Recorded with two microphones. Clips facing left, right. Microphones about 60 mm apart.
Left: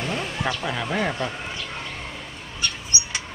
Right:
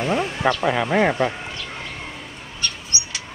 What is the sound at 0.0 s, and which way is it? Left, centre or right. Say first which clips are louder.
Speech: right 6 dB; right.